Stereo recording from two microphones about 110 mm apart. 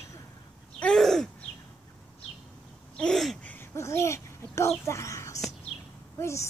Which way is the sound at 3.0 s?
5° left (ahead or behind).